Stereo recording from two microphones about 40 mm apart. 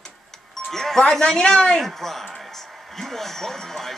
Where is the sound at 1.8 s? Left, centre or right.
Centre.